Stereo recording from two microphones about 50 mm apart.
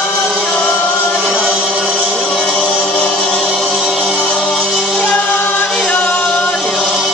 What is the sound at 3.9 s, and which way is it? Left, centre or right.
Choir, centre.